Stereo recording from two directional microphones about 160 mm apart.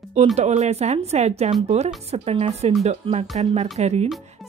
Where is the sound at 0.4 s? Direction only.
45° right (ahead or behind).